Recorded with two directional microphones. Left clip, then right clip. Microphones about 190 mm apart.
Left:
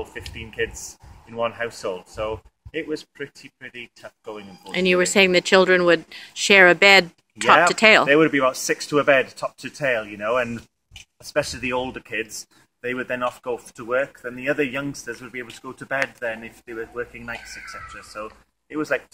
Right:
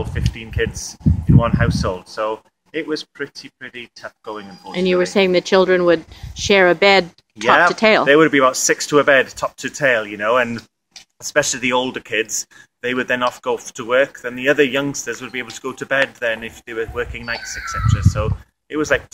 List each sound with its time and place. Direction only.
0.1 s speech: 15° left (ahead or behind)
4.6 s speech: centre (ahead or behind); by 18.9 s 20° right (ahead or behind)